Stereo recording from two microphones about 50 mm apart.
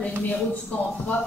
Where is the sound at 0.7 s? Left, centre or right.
Left.